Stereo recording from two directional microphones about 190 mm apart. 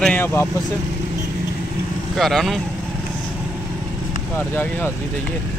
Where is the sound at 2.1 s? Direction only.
Centre (ahead or behind).